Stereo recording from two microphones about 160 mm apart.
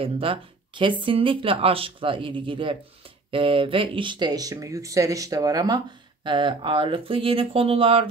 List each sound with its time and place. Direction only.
0.0 s speech: 35° right (ahead or behind)